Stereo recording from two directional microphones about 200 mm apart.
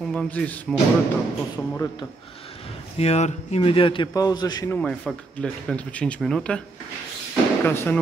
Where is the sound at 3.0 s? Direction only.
35° left (ahead or behind); by 6.6 s 5° left (ahead or behind).